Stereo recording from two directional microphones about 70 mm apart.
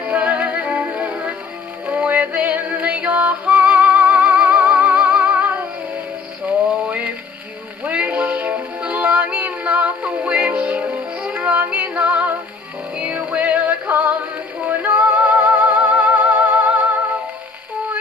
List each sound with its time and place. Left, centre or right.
0.0 s music: right